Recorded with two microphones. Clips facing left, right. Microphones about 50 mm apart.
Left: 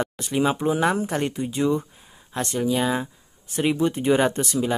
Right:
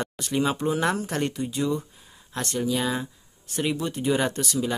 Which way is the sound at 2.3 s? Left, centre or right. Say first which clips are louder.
Left 3 dB; centre.